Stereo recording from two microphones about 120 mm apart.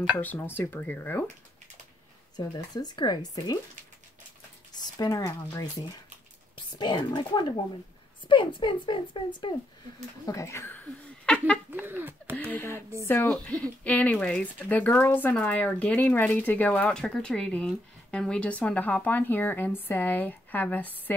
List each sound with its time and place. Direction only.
0.2 s speech: 15° left (ahead or behind)
2.3 s speech: 35° left (ahead or behind)
4.7 s speech: 30° left (ahead or behind)
6.5 s speech: 40° left (ahead or behind)
10.2 s speech: 25° left (ahead or behind); by 11.6 s 10° left (ahead or behind)
11.7 s speech: 15° right (ahead or behind)
12.4 s speech: 20° left (ahead or behind)